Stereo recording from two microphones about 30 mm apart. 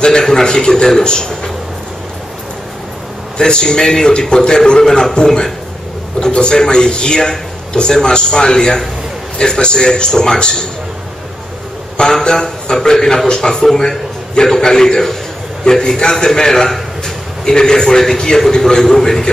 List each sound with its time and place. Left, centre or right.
0.2 s a man's voice: centre
3.3 s a man's voice: left
12.1 s a man's voice: left